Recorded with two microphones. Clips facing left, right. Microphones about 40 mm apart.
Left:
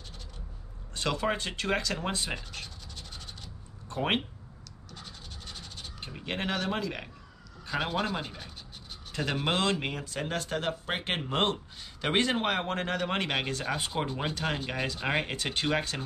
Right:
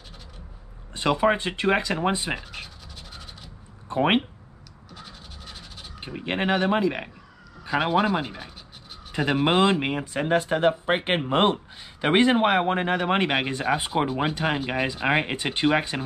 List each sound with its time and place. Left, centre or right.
0.9 s speech: right
2.3 s scratch: centre
3.9 s speech: right
4.9 s scratch: centre
5.9 s speech: right